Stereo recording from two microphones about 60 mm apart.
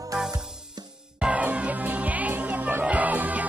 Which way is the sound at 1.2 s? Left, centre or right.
Right.